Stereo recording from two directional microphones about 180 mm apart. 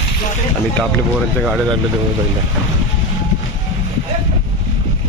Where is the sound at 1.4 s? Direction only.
Centre (ahead or behind).